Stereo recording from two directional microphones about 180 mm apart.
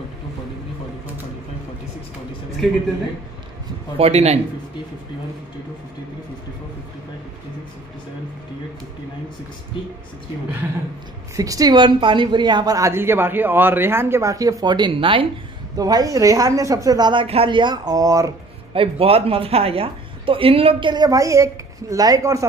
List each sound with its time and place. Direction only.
4.0 s a man's voice: 35° right (ahead or behind)
11.3 s a woman's voice: 20° right (ahead or behind)
18.7 s a woman's voice: 30° right (ahead or behind)